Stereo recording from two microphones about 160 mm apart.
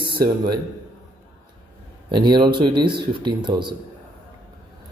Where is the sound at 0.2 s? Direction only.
30° right (ahead or behind).